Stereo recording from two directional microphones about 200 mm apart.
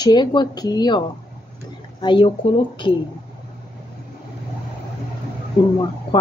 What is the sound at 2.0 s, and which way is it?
Speech, 25° left (ahead or behind).